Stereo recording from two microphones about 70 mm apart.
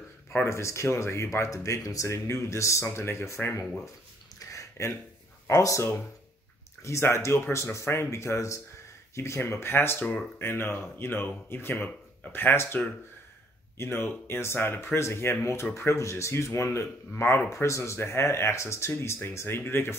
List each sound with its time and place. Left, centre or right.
0.3 s speech: left
4.4 s a sound: left
5.5 s speech: left